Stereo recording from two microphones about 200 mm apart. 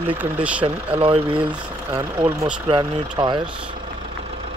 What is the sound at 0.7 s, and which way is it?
Speech, 25° right (ahead or behind).